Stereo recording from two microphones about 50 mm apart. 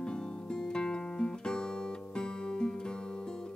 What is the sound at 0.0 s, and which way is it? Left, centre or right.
Music, centre.